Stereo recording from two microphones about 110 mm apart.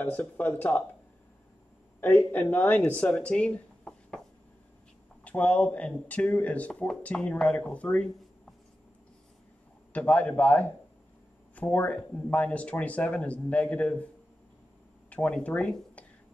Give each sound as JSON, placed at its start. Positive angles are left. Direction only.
{"t": 0.0, "sound": "speech", "side_deg": 15}
{"t": 2.0, "sound": "speech", "side_deg": 15}
{"t": 5.2, "sound": "speech", "side_deg": 15}
{"t": 9.9, "sound": "speech", "side_deg": 15}
{"t": 15.0, "sound": "speech", "side_deg": 10}